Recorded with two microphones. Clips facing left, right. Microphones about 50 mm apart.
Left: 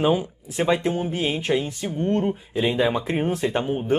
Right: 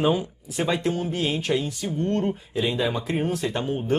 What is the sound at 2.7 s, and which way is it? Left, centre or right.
Speech, left.